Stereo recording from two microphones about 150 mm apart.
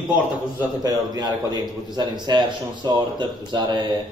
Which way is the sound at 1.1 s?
25° right (ahead or behind).